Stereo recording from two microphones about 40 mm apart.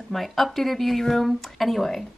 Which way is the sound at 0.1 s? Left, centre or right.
Centre.